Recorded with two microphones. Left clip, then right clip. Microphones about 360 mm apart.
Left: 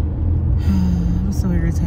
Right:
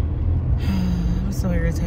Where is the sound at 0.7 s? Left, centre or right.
Centre.